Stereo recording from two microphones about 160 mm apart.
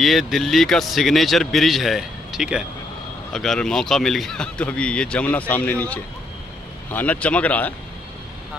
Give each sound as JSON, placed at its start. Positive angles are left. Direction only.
{"t": 0.0, "sound": "speech", "side_deg": 0}